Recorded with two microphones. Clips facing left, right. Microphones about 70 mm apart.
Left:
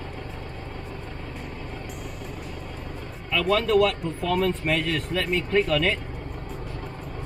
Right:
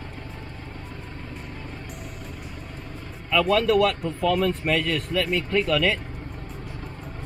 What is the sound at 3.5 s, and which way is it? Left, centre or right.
Speech, left.